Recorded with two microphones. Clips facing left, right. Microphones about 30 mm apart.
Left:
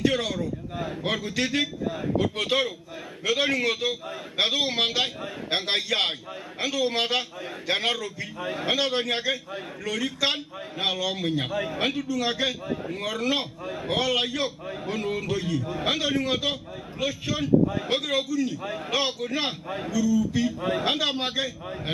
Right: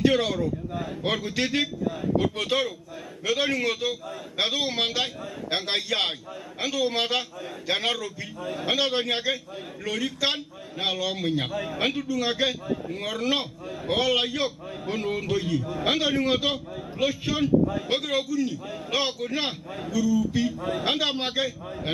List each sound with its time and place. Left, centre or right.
0.0 s a man's voice: centre
2.3 s a man's voice: centre
8.4 s a man's voice: left
8.6 s a man's voice: centre
19.9 s a man's voice: centre